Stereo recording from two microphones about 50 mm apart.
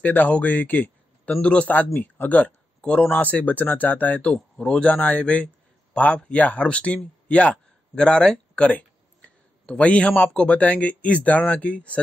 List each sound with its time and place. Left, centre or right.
0.0 s speech: left
1.3 s speech: left
2.0 s speech: left
2.8 s speech: centre
3.2 s speech: left
4.3 s speech: centre
4.9 s speech: left
8.6 s a sound: left
9.7 s speech: left